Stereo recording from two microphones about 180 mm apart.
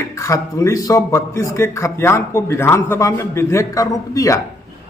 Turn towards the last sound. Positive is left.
turn(degrees=20)  # may be behind; listen again after turning